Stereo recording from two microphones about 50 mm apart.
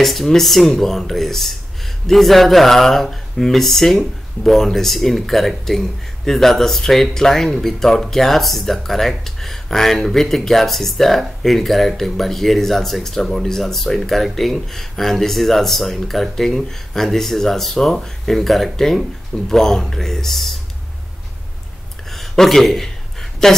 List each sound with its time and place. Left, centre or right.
0.0 s speech: centre
22.1 s a woman's voice: centre